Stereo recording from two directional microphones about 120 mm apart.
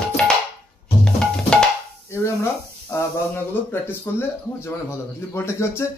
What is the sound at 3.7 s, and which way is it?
Speech, 15° left (ahead or behind).